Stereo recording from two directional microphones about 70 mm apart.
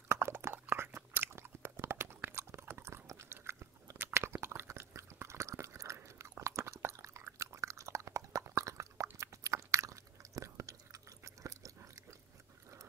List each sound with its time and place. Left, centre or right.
0.1 s chewing: right